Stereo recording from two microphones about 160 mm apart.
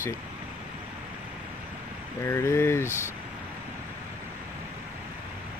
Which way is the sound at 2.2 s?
15° left (ahead or behind).